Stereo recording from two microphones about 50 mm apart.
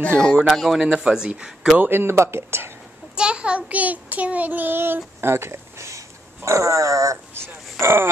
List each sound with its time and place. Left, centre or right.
0.5 s speech: centre
1.0 s speech: centre
1.8 s speech: right
3.2 s child singing: centre; by 7.2 s right
7.8 s speech: right